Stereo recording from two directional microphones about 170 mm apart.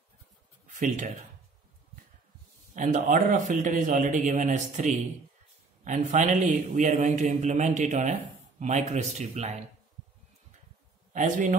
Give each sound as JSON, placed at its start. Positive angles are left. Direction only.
{"t": 0.7, "sound": "speech", "side_deg": -45}
{"t": 2.7, "sound": "a man's voice", "side_deg": -45}
{"t": 11.1, "sound": "a man's voice", "side_deg": -50}